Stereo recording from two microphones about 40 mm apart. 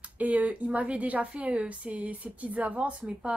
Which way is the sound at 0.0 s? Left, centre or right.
Right.